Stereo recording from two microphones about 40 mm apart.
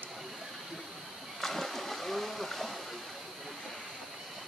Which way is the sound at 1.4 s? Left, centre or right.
Centre.